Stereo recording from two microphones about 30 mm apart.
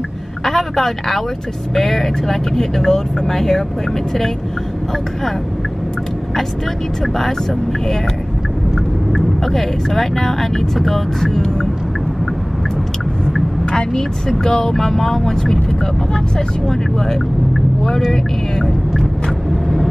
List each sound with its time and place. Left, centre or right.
0.5 s speech: centre
9.1 s speech: centre
13.9 s speech: centre